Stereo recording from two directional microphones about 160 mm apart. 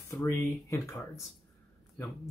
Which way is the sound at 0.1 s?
15° left (ahead or behind).